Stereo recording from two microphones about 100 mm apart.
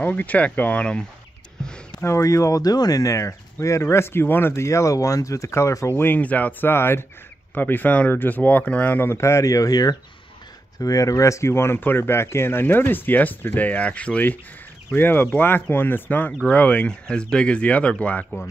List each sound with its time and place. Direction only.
0.0 s speech: 15° left (ahead or behind)
2.0 s speech: 30° left (ahead or behind); by 18.5 s 15° left (ahead or behind)